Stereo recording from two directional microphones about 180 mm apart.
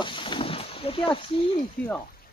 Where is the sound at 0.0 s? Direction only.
25° left (ahead or behind).